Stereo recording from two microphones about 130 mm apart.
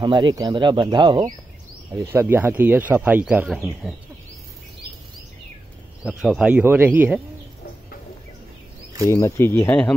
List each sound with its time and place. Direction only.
0.0 s speech: 35° right (ahead or behind)
2.0 s speech: 20° right (ahead or behind); by 3.9 s centre (ahead or behind)
6.0 s speech: 5° right (ahead or behind)
9.1 s speech: 20° left (ahead or behind)